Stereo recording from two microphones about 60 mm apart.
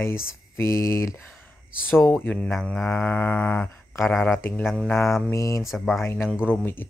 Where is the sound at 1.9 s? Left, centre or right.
Left.